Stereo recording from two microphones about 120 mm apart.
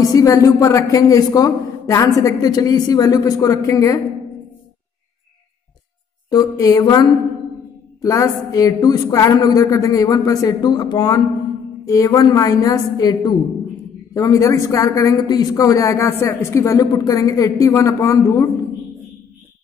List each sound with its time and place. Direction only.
0.0 s a woman's voice: 30° left (ahead or behind)
6.3 s a woman's voice: 30° left (ahead or behind)